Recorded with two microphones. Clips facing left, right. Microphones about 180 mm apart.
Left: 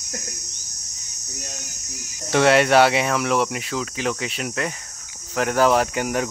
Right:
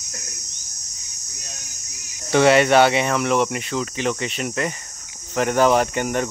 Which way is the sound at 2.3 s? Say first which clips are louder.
Right 1 dB; centre (ahead or behind).